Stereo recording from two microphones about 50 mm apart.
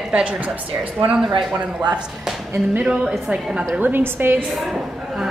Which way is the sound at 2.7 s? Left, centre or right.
Centre.